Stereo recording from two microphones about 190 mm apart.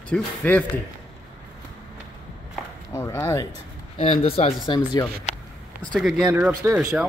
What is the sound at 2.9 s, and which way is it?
Speech, 15° left (ahead or behind).